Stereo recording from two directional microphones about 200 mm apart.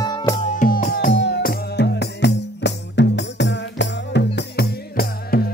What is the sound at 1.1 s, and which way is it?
Music, 60° left (ahead or behind).